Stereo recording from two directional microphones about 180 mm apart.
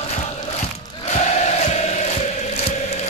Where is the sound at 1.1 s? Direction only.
40° left (ahead or behind).